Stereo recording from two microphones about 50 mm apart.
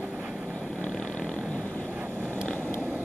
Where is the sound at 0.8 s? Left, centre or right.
Centre.